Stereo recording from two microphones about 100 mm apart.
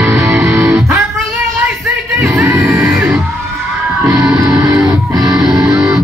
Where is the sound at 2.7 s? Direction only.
Centre (ahead or behind).